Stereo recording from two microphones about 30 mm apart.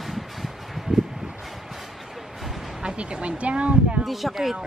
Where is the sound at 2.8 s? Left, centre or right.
Right.